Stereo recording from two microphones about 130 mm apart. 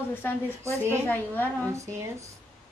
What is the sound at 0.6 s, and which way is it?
Speech, 20° right (ahead or behind).